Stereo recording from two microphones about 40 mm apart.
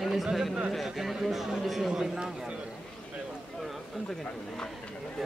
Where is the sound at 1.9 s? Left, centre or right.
Centre.